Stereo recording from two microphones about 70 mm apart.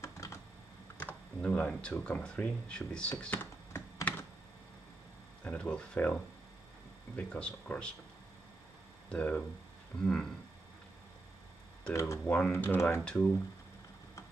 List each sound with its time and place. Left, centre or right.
0.0 s computer keyboard: left
0.9 s computer keyboard: centre
2.0 s speech: centre
5.4 s speech: centre
9.1 s speech: centre
11.9 s speech: left
12.3 s speech: left
13.0 s speech: centre